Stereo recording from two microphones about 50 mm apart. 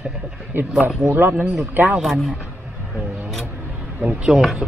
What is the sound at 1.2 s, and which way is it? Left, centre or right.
Speech, right.